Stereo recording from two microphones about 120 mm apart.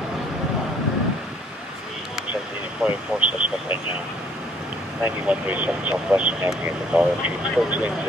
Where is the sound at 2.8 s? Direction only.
10° right (ahead or behind).